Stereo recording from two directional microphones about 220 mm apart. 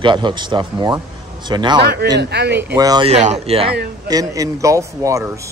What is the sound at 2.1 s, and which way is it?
Speech, 50° right (ahead or behind).